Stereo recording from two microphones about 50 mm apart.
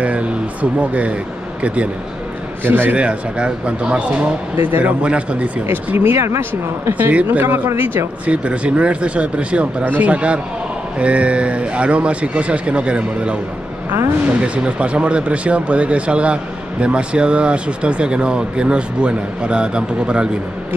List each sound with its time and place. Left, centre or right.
0.0 s speech: right
2.6 s a man's voice: right
3.0 s speech: right
4.6 s a man's voice: right
5.0 s speech: right
5.7 s speech: right
6.1 s speech: right
6.9 s a man's voice: right
8.3 s speech: right
9.8 s a man's voice: right
10.1 s speech: right